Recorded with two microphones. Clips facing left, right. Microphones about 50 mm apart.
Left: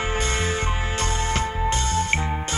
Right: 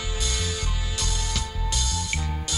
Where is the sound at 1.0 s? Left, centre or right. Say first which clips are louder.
Left 7 dB; left.